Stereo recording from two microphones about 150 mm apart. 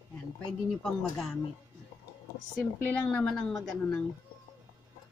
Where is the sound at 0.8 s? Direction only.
Centre (ahead or behind).